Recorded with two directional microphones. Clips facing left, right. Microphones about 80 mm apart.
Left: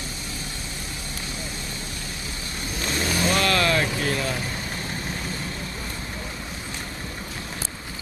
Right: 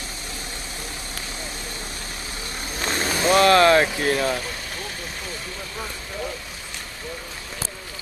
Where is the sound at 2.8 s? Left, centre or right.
Right.